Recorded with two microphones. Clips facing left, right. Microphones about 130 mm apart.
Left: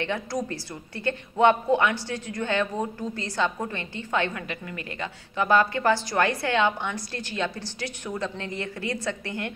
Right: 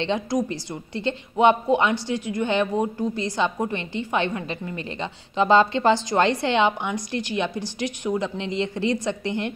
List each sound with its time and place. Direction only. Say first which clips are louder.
0.0 s a woman's voice: right 5 dB; 20° right (ahead or behind)